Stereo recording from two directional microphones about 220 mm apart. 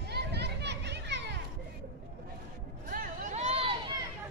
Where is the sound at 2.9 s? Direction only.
35° right (ahead or behind).